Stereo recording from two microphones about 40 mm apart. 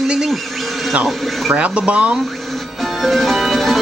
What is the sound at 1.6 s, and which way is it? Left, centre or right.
Speech, right.